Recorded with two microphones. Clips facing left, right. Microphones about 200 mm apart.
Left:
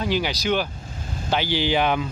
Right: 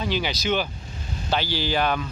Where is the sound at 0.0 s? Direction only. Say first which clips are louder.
Left 2 dB; 10° left (ahead or behind).